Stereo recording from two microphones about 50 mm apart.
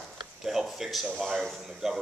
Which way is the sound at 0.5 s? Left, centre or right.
Centre.